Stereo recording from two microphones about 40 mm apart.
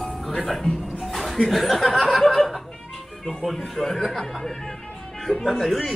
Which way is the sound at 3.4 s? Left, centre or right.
Centre.